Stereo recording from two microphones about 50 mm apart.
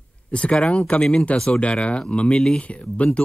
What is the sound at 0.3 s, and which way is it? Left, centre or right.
Speech, left.